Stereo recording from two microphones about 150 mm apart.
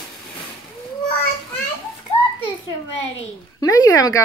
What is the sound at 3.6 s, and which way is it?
Speech, 25° left (ahead or behind).